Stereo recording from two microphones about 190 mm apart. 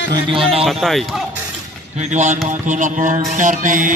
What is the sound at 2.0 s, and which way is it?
Music, 40° right (ahead or behind).